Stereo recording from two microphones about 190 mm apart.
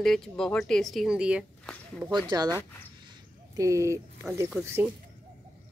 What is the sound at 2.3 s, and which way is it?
Speech, 20° right (ahead or behind).